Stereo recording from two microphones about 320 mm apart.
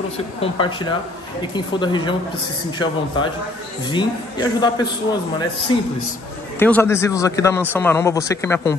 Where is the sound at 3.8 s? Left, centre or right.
Centre.